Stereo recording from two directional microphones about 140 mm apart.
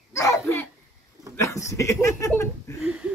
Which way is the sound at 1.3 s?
20° left (ahead or behind).